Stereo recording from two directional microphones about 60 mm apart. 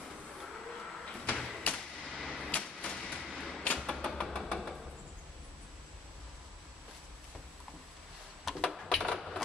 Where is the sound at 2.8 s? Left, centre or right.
Centre.